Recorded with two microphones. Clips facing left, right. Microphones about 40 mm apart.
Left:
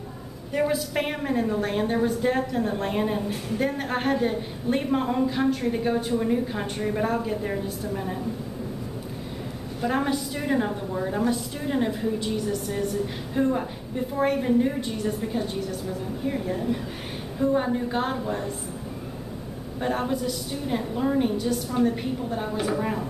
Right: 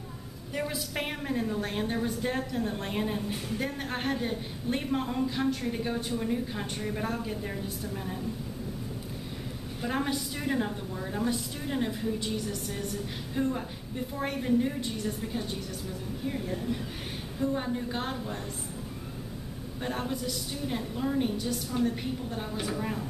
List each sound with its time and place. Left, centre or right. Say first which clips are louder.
0.5 s a woman's voice: left 9 dB; centre
9.8 s a woman's voice: left 6 dB; centre
10.7 s a woman's voice: left 7 dB; left
11.2 s a woman's voice: left 5 dB; centre
16.3 s a woman's voice: left 6 dB; centre
19.8 s a woman's voice: left 7 dB; centre